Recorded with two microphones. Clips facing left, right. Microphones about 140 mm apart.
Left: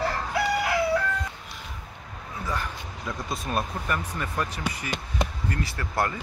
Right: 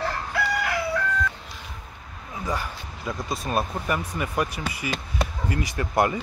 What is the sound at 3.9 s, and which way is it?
Speech, 10° right (ahead or behind).